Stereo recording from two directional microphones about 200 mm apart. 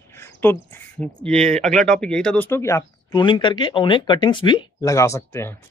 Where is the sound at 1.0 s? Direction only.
5° left (ahead or behind).